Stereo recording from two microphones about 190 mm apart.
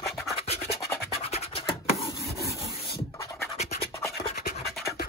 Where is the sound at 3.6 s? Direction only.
35° left (ahead or behind).